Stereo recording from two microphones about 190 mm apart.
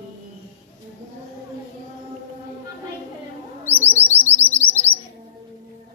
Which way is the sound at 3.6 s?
10° right (ahead or behind).